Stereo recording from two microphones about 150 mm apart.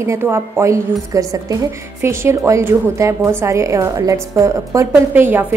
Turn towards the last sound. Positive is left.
turn(degrees=-15)  # may be behind; listen again after turning